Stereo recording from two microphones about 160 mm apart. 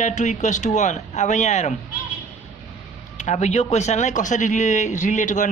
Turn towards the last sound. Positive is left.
turn(degrees=50)  # may be behind; listen again after turning